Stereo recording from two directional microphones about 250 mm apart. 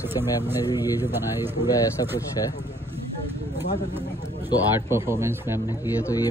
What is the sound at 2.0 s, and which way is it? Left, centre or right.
Speech, centre.